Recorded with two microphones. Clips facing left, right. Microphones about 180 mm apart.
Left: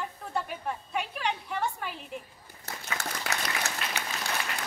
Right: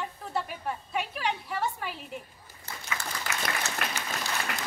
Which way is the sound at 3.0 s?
70° left (ahead or behind).